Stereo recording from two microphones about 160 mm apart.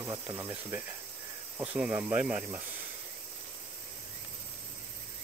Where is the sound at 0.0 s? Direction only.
15° right (ahead or behind).